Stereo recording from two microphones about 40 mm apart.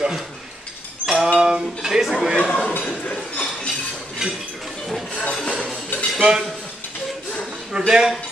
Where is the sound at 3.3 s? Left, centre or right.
Left.